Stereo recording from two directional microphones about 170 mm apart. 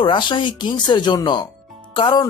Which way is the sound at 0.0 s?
25° left (ahead or behind).